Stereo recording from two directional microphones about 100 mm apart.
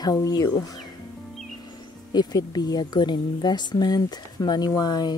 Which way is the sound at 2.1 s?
40° left (ahead or behind).